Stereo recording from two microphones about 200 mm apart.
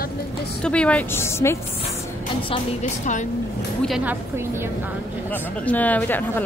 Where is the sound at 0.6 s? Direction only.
5° left (ahead or behind).